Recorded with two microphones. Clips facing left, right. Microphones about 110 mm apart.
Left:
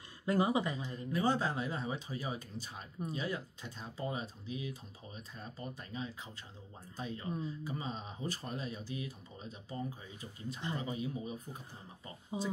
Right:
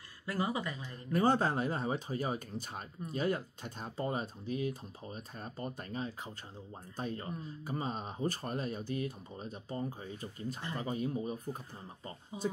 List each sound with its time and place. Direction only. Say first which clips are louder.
0.3 s speech: left 4 dB; 20° left (ahead or behind)
0.9 s speech: right 4 dB; 50° right (ahead or behind)
12.3 s speech: right 2 dB; 25° left (ahead or behind)